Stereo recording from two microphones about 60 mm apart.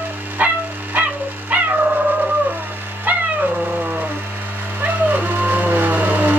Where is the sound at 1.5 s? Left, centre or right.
Right.